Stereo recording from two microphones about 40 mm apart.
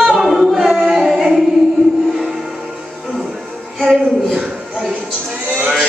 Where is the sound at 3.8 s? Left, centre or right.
Centre.